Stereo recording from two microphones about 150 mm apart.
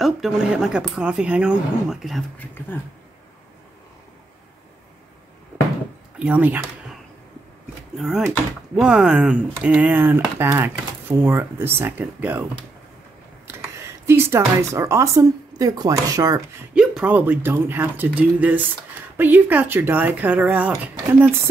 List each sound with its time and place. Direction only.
0.0 s speech: 5° right (ahead or behind)
6.1 s speech: 10° right (ahead or behind)
8.7 s speech: 5° right (ahead or behind)
13.7 s speech: 15° right (ahead or behind)
16.7 s speech: 5° right (ahead or behind)